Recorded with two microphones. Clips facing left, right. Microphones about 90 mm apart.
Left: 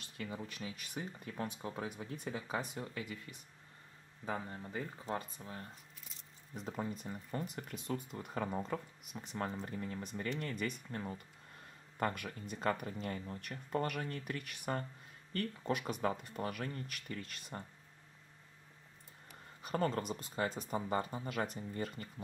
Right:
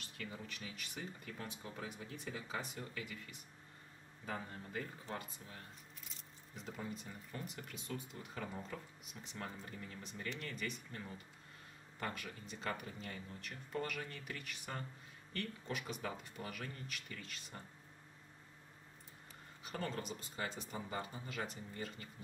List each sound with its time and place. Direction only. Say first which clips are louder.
0.6 s speech: left 4 dB; 35° left (ahead or behind)
2.8 s speech: left 4 dB; 35° left (ahead or behind)
4.3 s speech: left 4 dB; 20° left (ahead or behind); by 17.6 s 50° left (ahead or behind)
19.6 s speech: left 8 dB; 45° left (ahead or behind)